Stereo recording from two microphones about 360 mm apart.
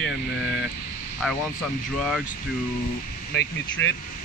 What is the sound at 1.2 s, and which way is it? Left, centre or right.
Speech, centre.